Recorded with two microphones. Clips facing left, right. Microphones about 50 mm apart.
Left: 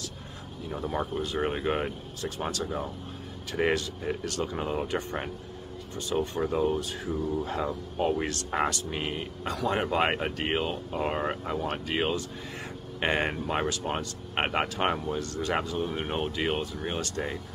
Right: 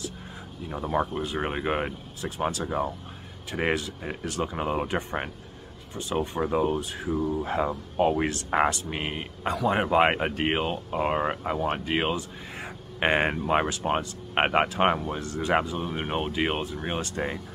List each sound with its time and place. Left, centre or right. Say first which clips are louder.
0.7 s speech: right 4 dB; centre